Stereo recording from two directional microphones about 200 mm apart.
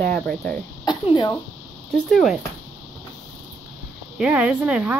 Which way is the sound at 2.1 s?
Centre (ahead or behind).